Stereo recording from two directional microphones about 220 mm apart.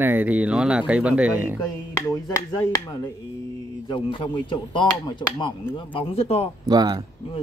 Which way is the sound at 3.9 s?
20° left (ahead or behind).